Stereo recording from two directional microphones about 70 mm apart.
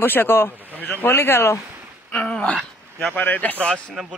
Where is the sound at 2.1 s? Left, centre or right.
Centre.